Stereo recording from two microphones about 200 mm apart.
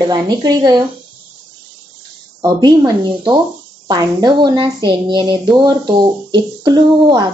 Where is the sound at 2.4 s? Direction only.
20° right (ahead or behind).